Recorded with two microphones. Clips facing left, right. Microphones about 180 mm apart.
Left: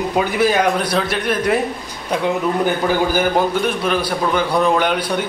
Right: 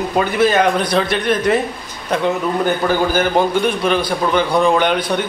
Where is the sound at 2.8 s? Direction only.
10° left (ahead or behind).